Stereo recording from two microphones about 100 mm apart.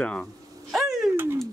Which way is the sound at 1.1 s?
25° right (ahead or behind).